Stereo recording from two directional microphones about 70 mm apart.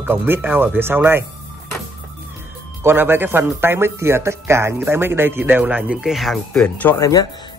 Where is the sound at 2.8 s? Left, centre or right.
Right; by 6.0 s centre.